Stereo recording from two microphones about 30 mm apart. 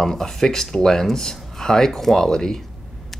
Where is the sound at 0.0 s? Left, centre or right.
Centre.